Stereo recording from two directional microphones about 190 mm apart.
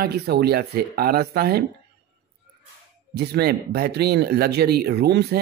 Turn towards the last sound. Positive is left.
turn(degrees=-55)  # may be behind; listen again after turning